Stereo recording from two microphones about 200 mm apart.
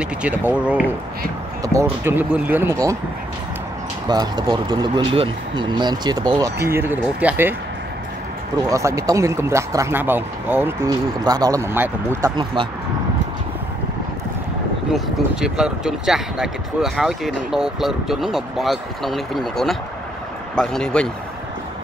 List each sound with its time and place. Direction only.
0.0 s speech: 5° right (ahead or behind)
1.6 s speech: 15° right (ahead or behind)
4.1 s speech: 20° right (ahead or behind)
8.6 s speech: 15° right (ahead or behind)
14.9 s speech: centre (ahead or behind)